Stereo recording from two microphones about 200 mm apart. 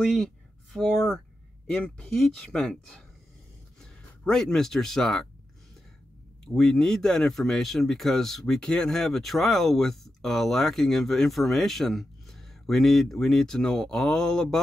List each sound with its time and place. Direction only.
0.0 s speech: centre (ahead or behind)
6.4 s speech: 5° left (ahead or behind)